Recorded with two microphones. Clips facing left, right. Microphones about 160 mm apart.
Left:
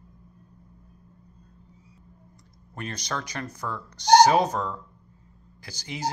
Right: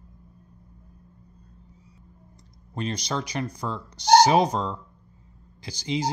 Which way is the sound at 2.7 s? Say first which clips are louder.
Right 4 dB; 15° right (ahead or behind).